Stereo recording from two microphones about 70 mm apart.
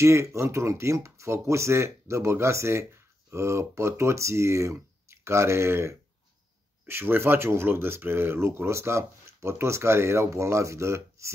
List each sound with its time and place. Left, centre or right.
0.0 s speech: right